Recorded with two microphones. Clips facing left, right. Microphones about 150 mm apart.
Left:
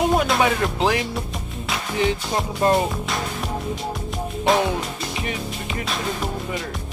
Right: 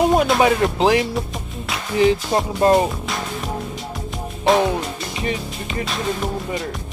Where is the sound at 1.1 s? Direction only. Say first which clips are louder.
Right 3 dB; centre (ahead or behind).